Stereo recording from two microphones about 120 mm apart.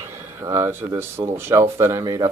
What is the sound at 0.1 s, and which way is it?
Speech, 20° right (ahead or behind).